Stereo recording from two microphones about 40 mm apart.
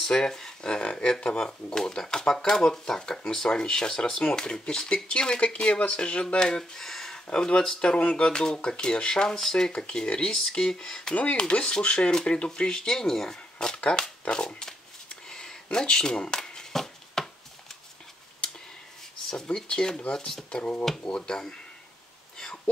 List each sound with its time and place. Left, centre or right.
0.0 s speech: centre
14.3 s a sound: left
19.3 s speech: left